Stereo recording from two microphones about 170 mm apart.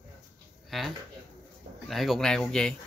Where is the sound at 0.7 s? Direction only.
Centre (ahead or behind).